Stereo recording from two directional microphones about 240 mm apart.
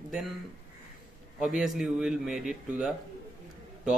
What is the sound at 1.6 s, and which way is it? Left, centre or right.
Speech, centre.